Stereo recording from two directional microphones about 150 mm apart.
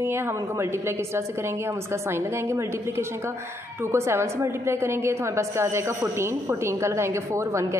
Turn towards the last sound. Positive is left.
turn(degrees=-20)  # may be behind; listen again after turning